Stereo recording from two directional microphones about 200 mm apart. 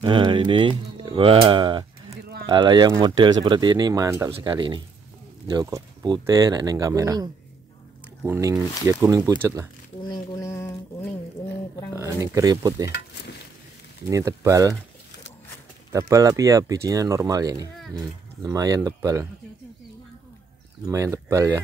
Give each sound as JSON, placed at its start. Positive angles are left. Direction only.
{"t": 0.0, "sound": "speech", "side_deg": -25}
{"t": 10.0, "sound": "speech", "side_deg": 20}
{"t": 11.9, "sound": "speech", "side_deg": -15}
{"t": 14.0, "sound": "speech", "side_deg": -15}
{"t": 15.9, "sound": "speech", "side_deg": -15}
{"t": 20.8, "sound": "speech", "side_deg": -15}